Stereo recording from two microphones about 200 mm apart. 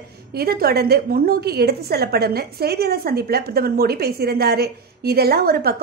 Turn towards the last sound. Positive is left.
turn(degrees=-50)  # may be behind; listen again after turning